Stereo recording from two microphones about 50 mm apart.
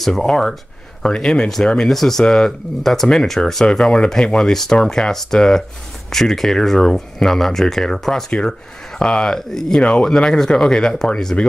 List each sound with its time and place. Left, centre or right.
0.0 s speech: centre
11.4 s speech: left